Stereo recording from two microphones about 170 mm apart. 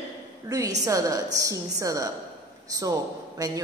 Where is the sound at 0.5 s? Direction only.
20° right (ahead or behind).